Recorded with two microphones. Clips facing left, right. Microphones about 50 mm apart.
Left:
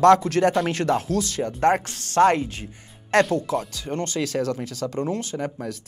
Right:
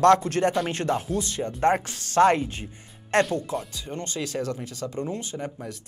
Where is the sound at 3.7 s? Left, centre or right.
Left.